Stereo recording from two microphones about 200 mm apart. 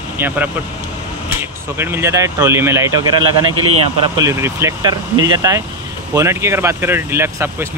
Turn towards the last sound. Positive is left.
turn(degrees=-10)  # may be behind; listen again after turning